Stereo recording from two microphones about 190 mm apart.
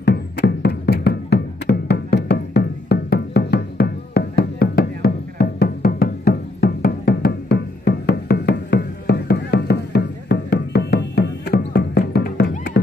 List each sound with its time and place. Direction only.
0.0 s music: 60° left (ahead or behind)